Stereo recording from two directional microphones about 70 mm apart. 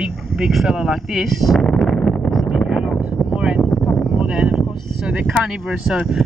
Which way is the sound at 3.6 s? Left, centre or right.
Centre.